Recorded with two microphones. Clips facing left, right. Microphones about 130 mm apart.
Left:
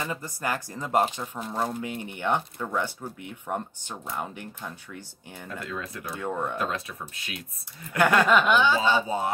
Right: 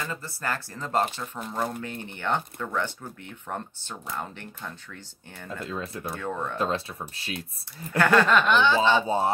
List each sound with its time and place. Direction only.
0.0 s speech: 15° left (ahead or behind)
5.6 s speech: 25° right (ahead or behind)
6.2 s speech: 10° left (ahead or behind)
6.6 s speech: 30° right (ahead or behind)
8.0 s speech: 10° left (ahead or behind)
9.0 s speech: 30° right (ahead or behind)